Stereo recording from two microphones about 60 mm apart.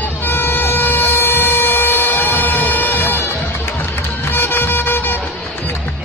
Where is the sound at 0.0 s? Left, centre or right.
Left.